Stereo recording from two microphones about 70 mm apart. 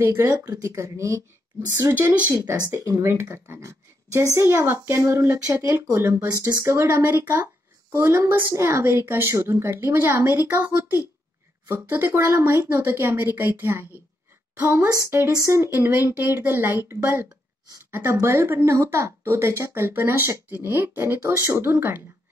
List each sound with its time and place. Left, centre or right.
0.0 s speech: right
1.8 s a woman's voice: right
2.3 s speech: right
2.8 s a woman's voice: right
4.4 s speech: right
10.2 s a woman's voice: right